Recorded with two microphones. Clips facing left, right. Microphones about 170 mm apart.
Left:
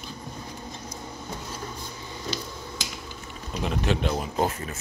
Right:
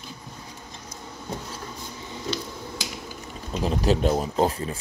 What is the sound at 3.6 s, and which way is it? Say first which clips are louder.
Speech: right 4 dB; 35° right (ahead or behind).